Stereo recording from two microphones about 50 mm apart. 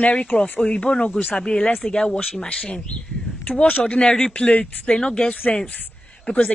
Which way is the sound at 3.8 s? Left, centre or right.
Centre.